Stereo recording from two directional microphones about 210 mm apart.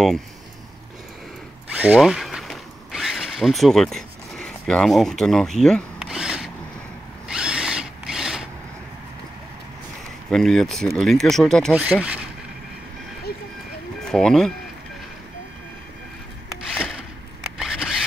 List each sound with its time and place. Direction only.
1.7 s zipper: 5° right (ahead or behind)
7.2 s drill: 5° right (ahead or behind)
10.3 s speech: centre (ahead or behind)
14.0 s speech: centre (ahead or behind)
16.7 s a sound: centre (ahead or behind)